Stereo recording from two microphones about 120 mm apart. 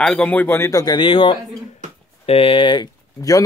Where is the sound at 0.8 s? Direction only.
40° left (ahead or behind).